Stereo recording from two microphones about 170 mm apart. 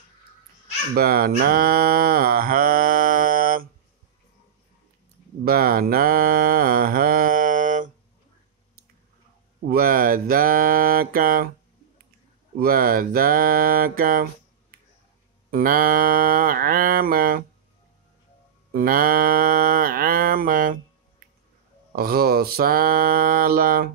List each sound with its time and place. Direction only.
0.9 s mantra: 65° right (ahead or behind)
5.4 s mantra: 60° right (ahead or behind)
9.7 s mantra: 60° right (ahead or behind)
12.5 s mantra: 60° right (ahead or behind)
15.5 s mantra: 60° right (ahead or behind)
18.7 s mantra: 60° right (ahead or behind)
21.9 s mantra: 60° right (ahead or behind)